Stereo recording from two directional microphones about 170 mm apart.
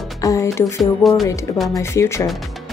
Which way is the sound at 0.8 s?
Centre (ahead or behind).